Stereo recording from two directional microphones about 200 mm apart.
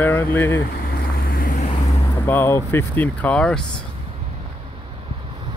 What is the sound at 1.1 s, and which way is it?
Vehicle, 45° left (ahead or behind).